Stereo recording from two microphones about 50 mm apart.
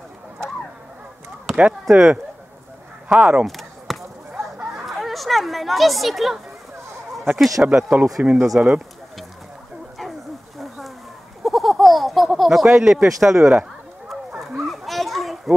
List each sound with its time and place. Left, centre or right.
1.6 s speech: centre
3.1 s speech: right
3.4 s chop: centre
4.9 s speech: centre
7.7 s speech: centre
8.2 s speech: right
8.5 s speech: centre
11.4 s baby laughter: centre
12.8 s speech: centre
14.7 s children playing: centre